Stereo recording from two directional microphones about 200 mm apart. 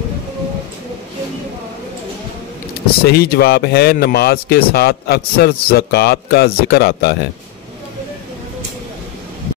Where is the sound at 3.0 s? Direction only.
50° left (ahead or behind).